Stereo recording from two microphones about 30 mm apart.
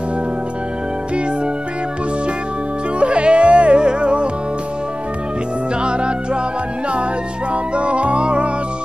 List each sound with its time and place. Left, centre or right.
3.0 s music: right
5.8 s music: right
7.7 s music: right